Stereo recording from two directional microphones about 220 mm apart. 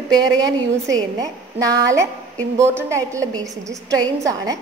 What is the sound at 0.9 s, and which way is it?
A woman's voice, 15° right (ahead or behind).